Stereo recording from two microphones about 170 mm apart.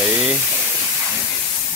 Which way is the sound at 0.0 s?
5° right (ahead or behind).